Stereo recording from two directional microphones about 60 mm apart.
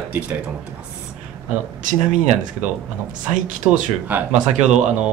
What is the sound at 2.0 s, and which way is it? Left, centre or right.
A man's voice, right.